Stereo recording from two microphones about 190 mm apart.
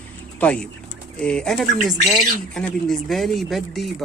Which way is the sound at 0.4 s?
5° left (ahead or behind).